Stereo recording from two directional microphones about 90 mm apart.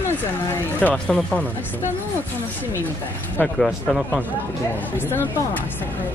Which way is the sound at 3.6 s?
Centre (ahead or behind).